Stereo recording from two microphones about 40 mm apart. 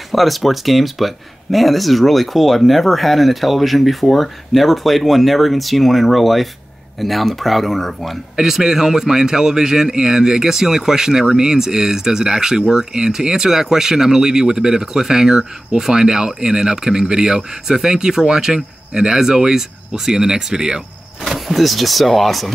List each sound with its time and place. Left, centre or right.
0.1 s speech: centre
8.4 s speech: centre
21.3 s speech: centre